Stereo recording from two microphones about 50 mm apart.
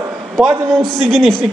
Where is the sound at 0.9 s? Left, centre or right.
Centre.